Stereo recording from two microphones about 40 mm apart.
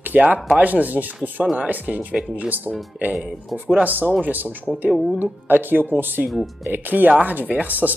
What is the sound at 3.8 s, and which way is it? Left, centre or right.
Speech, right.